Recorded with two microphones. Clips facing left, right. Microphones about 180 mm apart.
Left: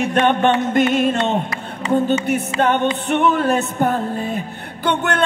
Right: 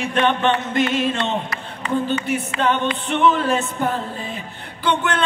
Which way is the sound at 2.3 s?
50° left (ahead or behind).